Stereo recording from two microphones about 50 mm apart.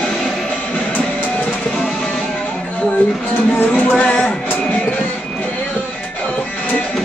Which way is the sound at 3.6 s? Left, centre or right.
Left.